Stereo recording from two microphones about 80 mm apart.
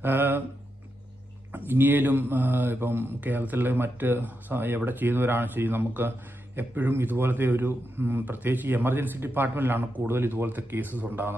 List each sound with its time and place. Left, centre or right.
0.0 s speech: right
1.7 s speech: right